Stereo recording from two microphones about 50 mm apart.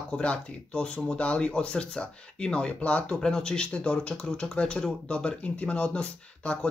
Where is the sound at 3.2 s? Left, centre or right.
Centre.